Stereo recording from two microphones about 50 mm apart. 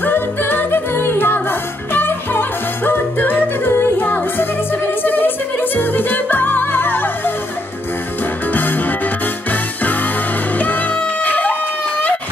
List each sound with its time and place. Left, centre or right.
0.0 s music: left
8.5 s music: left